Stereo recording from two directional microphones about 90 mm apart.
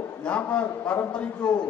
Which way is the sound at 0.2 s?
15° left (ahead or behind).